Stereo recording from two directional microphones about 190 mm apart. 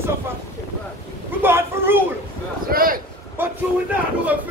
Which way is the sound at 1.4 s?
10° right (ahead or behind).